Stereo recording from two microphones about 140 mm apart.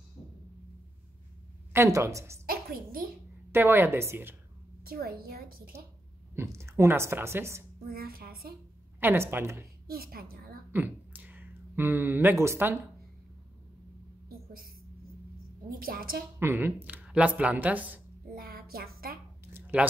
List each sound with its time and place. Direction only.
1.7 s a woman's voice: 20° right (ahead or behind)
2.4 s a woman's voice: 90° right
3.5 s speech: 15° right (ahead or behind)
4.8 s a woman's voice: 90° right
6.3 s a woman's voice: 20° right (ahead or behind)
7.8 s a woman's voice: 90° right
9.0 s speech: 15° right (ahead or behind)
9.8 s a woman's voice: 90° right
10.7 s speech: 10° right (ahead or behind)
15.7 s a woman's voice: 90° right
16.3 s speech: 15° right (ahead or behind)
18.3 s a sound: 90° right
19.4 s a sound: 15° right (ahead or behind)